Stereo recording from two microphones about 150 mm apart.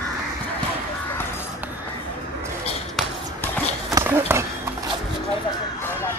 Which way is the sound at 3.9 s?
20° right (ahead or behind).